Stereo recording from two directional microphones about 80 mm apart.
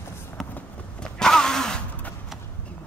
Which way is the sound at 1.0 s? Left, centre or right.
Centre.